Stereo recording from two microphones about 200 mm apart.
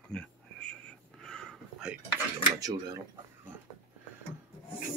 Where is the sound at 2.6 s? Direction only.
15° right (ahead or behind).